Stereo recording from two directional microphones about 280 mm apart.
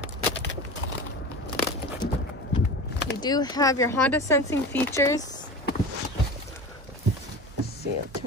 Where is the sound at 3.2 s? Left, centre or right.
Centre.